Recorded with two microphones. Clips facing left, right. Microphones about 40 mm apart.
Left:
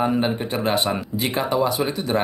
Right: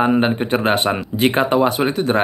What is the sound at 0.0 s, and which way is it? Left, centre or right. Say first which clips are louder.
Speech: right 5 dB; right.